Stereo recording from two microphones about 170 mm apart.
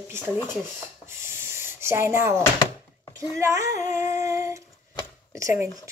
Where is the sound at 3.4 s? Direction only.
15° right (ahead or behind).